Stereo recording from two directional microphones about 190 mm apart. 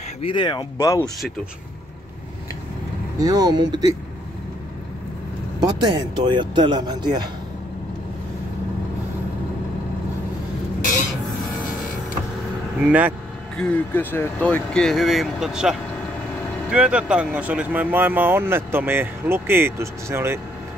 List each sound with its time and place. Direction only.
0.2 s speech: 25° left (ahead or behind)
3.2 s speech: 20° right (ahead or behind)
5.8 s speech: 25° right (ahead or behind)
12.8 s speech: 10° right (ahead or behind)
13.6 s speech: 10° left (ahead or behind)
16.7 s speech: 5° right (ahead or behind)